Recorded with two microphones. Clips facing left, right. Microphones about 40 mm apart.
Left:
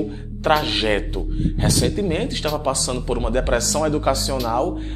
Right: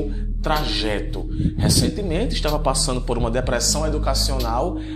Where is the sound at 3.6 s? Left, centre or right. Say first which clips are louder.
Left 3 dB; left.